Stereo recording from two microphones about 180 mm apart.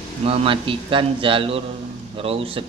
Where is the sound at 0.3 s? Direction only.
30° right (ahead or behind).